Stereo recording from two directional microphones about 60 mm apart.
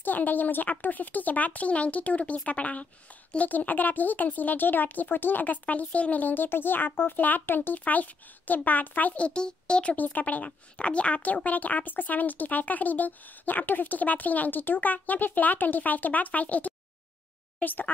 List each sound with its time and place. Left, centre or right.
0.0 s speech: left
9.9 s speech: left